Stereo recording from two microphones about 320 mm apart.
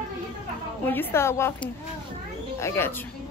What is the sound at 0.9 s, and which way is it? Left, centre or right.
A woman's voice, centre.